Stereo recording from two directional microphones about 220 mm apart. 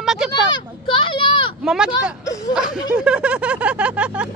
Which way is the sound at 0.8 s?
25° left (ahead or behind).